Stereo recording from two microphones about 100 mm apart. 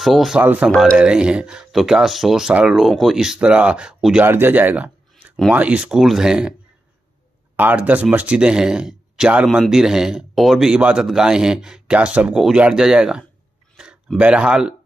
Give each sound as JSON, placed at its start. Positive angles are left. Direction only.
{"t": 0.0, "sound": "a man's voice", "side_deg": 0}
{"t": 0.4, "sound": "a man's voice", "side_deg": -15}
{"t": 4.3, "sound": "speech", "side_deg": -20}
{"t": 7.5, "sound": "a man's voice", "side_deg": -15}